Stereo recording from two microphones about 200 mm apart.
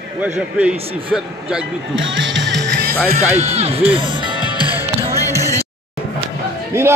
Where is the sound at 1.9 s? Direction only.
70° right (ahead or behind).